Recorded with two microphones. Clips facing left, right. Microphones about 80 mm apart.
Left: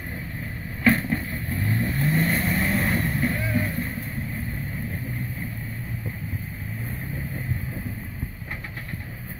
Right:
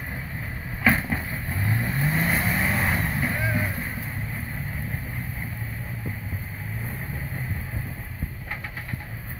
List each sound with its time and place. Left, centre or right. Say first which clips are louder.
0.8 s vehicle: left 2 dB; centre